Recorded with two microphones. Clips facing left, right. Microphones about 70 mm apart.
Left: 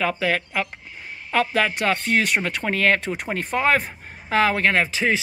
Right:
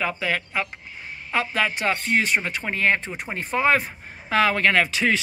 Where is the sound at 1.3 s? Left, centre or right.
Left.